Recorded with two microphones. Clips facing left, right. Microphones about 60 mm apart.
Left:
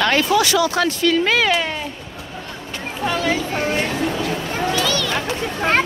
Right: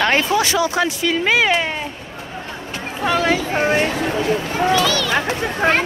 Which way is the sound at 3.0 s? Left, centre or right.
Right.